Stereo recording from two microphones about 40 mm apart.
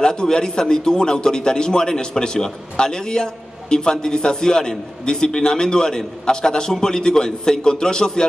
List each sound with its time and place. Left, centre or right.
0.0 s a man's voice: centre